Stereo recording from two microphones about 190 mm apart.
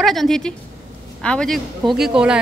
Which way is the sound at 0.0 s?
Centre (ahead or behind).